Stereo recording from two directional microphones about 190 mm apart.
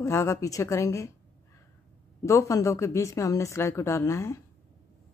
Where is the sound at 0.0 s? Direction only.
15° left (ahead or behind).